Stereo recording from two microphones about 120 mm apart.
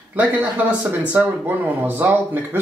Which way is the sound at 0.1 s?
15° right (ahead or behind).